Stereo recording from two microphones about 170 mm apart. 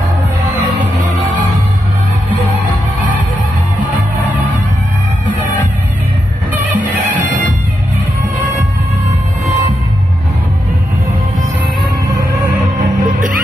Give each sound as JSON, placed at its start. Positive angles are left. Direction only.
{"t": 13.0, "sound": "music", "side_deg": -50}